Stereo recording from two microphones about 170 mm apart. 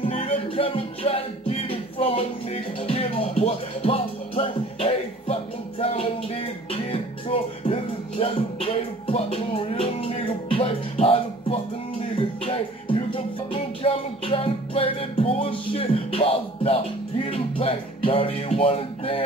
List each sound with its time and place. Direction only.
0.0 s music: 35° left (ahead or behind)